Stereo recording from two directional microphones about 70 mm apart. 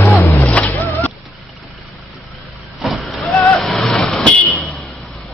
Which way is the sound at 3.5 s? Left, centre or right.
Centre.